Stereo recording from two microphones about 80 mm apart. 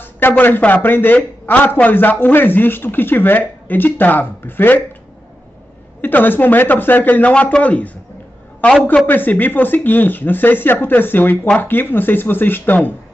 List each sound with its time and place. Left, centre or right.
0.0 s a man's voice: left
5.9 s a man's voice: left
9.0 s a man's voice: left